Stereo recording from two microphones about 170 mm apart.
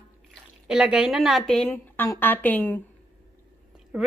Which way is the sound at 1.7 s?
10° left (ahead or behind).